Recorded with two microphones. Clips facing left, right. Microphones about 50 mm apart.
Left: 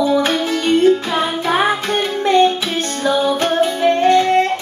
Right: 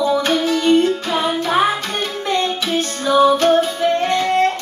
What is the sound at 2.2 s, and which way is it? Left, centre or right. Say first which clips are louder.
Music: left 7 dB; left.